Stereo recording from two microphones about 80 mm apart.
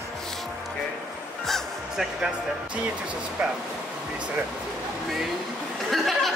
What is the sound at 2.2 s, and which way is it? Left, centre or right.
Speech, centre.